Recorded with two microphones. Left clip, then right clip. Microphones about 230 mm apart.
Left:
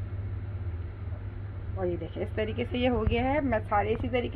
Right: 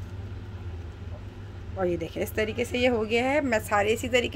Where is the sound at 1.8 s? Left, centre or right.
Right.